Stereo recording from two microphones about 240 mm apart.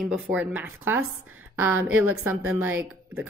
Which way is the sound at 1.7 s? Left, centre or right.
Right.